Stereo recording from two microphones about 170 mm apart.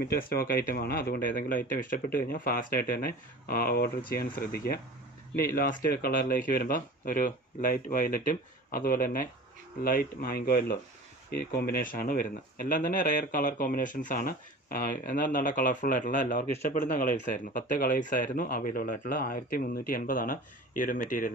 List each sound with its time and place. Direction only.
0.0 s speech: 65° left (ahead or behind)